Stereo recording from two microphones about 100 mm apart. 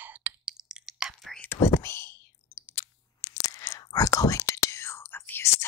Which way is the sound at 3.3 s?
35° left (ahead or behind).